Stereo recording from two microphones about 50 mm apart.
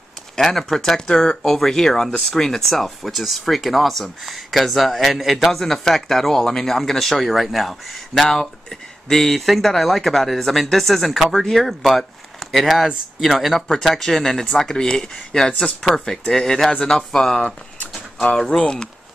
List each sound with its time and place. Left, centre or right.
0.4 s speech: centre